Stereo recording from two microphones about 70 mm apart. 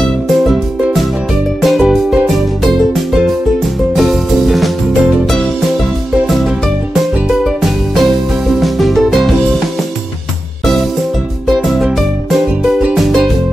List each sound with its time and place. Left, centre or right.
1.6 s music: centre
7.4 s music: centre
11.4 s music: centre